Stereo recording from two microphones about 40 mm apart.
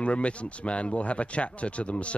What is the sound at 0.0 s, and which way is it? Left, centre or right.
A man's voice, left.